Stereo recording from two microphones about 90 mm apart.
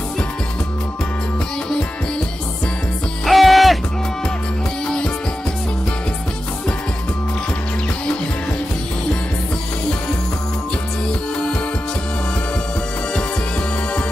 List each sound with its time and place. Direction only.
3.3 s music: centre (ahead or behind)
4.8 s music: 10° left (ahead or behind)